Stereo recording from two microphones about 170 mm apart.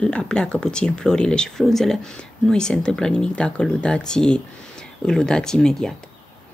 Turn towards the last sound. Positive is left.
turn(degrees=5)  # may be behind; listen again after turning